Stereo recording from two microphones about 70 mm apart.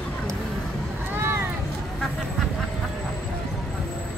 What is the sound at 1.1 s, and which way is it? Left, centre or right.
Vehicle, right.